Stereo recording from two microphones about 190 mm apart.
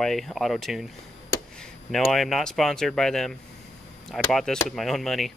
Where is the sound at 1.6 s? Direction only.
Centre (ahead or behind).